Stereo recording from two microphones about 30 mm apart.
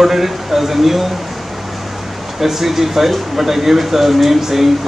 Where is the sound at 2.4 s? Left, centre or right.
Centre.